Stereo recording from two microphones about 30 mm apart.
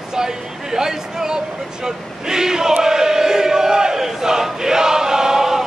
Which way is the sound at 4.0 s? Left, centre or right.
Centre.